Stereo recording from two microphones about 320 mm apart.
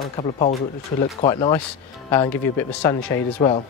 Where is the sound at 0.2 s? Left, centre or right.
Centre.